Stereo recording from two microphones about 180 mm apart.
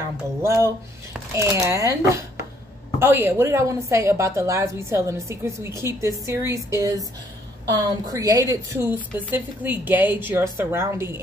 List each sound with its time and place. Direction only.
0.4 s a woman's voice: 15° right (ahead or behind)